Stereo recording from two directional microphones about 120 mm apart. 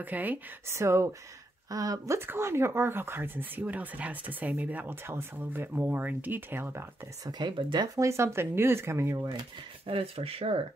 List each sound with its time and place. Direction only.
0.0 s speech: 15° right (ahead or behind)
7.2 s speech: 40° right (ahead or behind)
9.8 s speech: 55° right (ahead or behind)